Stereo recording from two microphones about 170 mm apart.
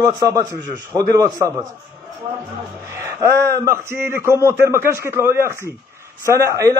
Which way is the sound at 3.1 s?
15° right (ahead or behind).